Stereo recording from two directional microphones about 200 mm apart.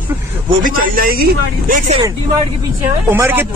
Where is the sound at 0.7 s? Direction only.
45° right (ahead or behind).